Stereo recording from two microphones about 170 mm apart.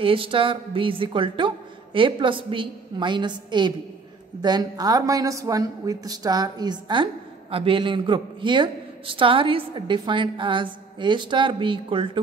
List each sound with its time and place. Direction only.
0.0 s a man's voice: 30° right (ahead or behind)